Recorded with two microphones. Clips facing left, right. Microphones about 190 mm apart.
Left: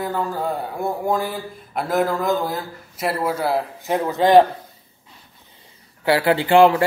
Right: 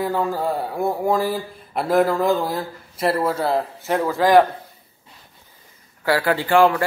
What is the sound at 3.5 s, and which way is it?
Speech, 15° left (ahead or behind).